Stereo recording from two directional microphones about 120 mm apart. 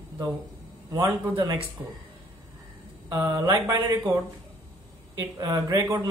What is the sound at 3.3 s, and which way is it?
Speech, 35° right (ahead or behind).